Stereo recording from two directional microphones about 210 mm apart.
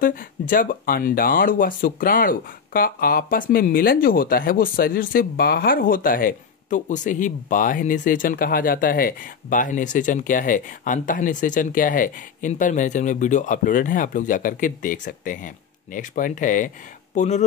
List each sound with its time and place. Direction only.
0.0 s speech: 40° left (ahead or behind)